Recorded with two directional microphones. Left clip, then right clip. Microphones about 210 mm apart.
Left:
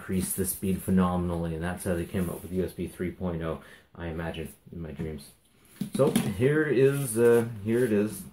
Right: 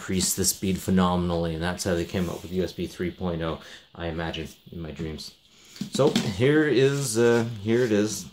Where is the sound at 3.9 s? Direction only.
50° right (ahead or behind).